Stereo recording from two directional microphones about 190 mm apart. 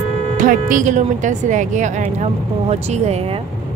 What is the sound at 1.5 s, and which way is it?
Speech, 40° right (ahead or behind).